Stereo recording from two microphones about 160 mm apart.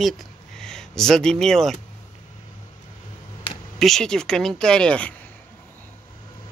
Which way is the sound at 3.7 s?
Centre (ahead or behind).